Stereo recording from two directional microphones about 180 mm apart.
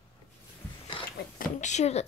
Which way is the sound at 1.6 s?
40° left (ahead or behind).